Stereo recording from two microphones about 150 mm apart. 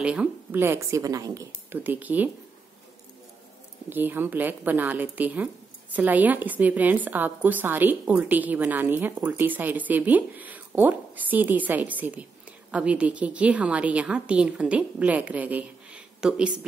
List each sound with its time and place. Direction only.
0.0 s a woman's voice: 10° right (ahead or behind)
3.9 s a woman's voice: 15° right (ahead or behind)